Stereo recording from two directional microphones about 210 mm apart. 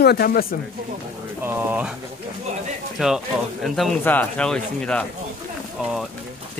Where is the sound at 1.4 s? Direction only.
10° right (ahead or behind).